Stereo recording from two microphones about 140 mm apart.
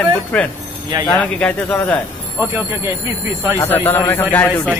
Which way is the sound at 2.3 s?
15° right (ahead or behind).